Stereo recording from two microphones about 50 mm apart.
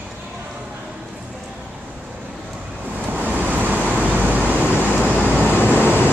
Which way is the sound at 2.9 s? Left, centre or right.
Right.